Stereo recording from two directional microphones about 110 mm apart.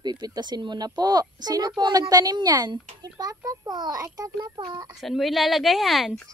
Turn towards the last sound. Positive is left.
turn(degrees=0)  # may be behind; listen again after turning